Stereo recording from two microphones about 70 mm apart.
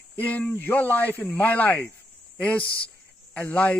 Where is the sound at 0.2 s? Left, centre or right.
Left.